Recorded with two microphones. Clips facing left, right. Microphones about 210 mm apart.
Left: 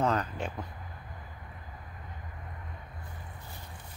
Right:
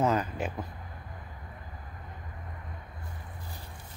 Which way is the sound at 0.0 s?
5° right (ahead or behind).